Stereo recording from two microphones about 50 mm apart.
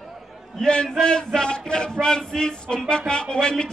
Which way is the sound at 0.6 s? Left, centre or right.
Centre.